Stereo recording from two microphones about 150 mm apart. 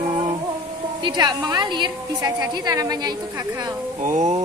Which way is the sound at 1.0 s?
30° right (ahead or behind).